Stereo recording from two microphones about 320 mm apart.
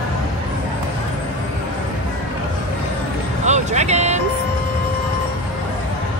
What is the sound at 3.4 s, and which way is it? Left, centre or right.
Vehicle, right.